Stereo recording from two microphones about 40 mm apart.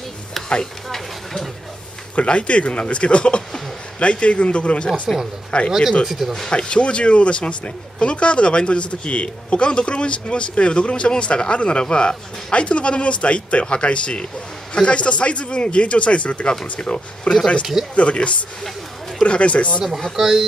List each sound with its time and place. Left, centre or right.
0.8 s a sound: centre
2.2 s speech: left
5.1 s speech: centre
5.5 s speech: left
6.0 s speech: centre
6.5 s speech: left
20.2 s speech: centre